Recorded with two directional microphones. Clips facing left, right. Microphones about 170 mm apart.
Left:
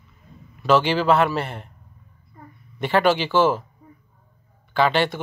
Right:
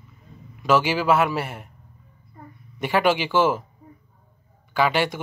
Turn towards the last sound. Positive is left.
turn(degrees=-10)  # may be behind; listen again after turning